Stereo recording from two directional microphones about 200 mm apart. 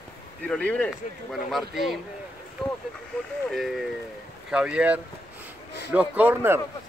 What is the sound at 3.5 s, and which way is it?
Speech, centre (ahead or behind).